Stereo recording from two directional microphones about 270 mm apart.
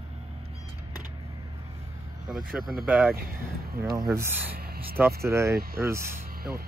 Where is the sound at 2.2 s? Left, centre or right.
Centre.